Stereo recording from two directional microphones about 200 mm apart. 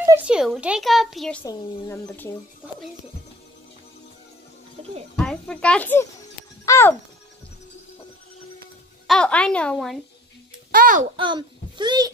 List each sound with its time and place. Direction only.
0.0 s a child's voice: 10° right (ahead or behind)
1.4 s speech: 15° left (ahead or behind)
4.8 s speech: 30° right (ahead or behind)
5.1 s a child's voice: 5° left (ahead or behind)
9.0 s a child's voice: 5° left (ahead or behind)
10.7 s a child's voice: 45° right (ahead or behind)
11.1 s a child's voice: 25° right (ahead or behind)